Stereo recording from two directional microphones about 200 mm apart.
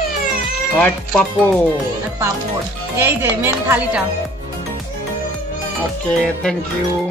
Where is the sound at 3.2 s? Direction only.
10° right (ahead or behind).